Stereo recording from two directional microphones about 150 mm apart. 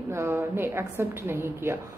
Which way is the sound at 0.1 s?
15° right (ahead or behind).